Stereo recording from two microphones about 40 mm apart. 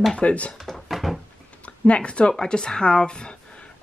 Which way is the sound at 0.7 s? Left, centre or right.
Centre.